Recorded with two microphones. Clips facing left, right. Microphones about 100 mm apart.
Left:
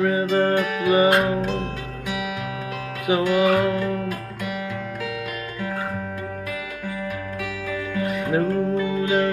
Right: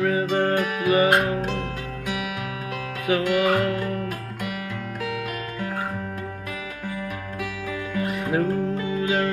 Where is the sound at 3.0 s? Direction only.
15° left (ahead or behind).